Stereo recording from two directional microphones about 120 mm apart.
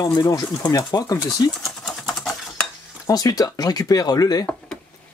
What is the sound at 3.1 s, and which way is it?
Speech, 30° left (ahead or behind).